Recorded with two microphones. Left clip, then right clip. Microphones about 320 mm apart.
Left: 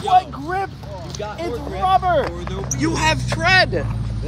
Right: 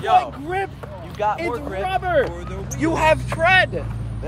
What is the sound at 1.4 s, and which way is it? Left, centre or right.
Speech, centre.